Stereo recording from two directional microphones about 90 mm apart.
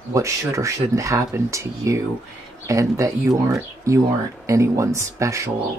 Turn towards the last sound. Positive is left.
turn(degrees=-35)  # may be behind; listen again after turning